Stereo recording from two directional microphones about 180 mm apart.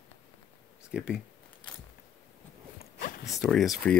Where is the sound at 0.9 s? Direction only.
5° right (ahead or behind).